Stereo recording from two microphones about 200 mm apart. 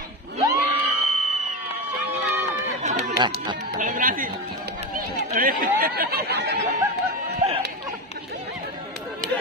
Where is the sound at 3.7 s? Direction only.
40° right (ahead or behind).